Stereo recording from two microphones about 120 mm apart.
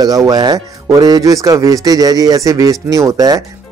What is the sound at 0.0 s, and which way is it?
Speech, 30° right (ahead or behind).